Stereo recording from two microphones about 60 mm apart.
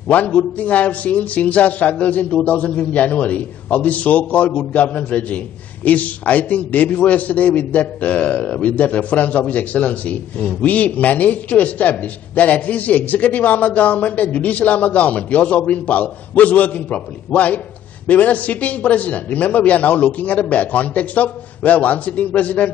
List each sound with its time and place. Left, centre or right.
0.1 s a man's voice: left